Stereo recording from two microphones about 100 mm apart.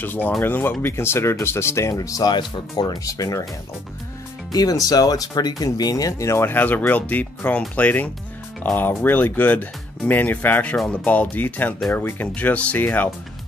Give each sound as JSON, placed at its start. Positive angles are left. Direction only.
{"t": 0.0, "sound": "speech", "side_deg": 20}
{"t": 2.3, "sound": "speech", "side_deg": 45}
{"t": 3.1, "sound": "speech", "side_deg": 35}
{"t": 4.5, "sound": "speech", "side_deg": 40}